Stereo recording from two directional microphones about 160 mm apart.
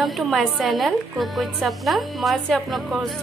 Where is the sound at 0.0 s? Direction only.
Centre (ahead or behind).